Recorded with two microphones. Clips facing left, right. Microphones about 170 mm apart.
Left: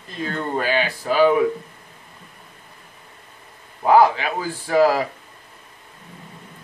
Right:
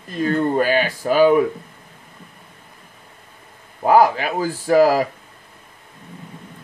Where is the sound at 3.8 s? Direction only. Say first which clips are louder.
Right 1 dB; 45° right (ahead or behind).